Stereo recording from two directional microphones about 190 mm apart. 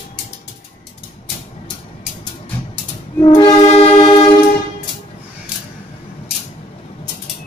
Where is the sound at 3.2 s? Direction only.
25° left (ahead or behind).